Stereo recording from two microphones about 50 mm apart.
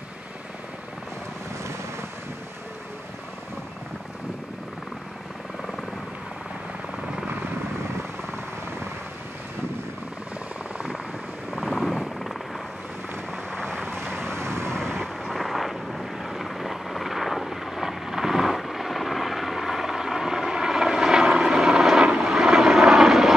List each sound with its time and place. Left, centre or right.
11.5 s vehicle: centre
13.7 s vehicle: right
14.2 s vehicle: right
14.8 s vehicle: centre
15.2 s vehicle: centre